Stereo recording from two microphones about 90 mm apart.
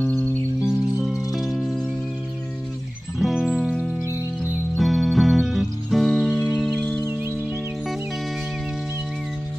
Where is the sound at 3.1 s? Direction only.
Centre (ahead or behind).